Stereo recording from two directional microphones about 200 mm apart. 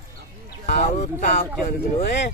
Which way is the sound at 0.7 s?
35° left (ahead or behind).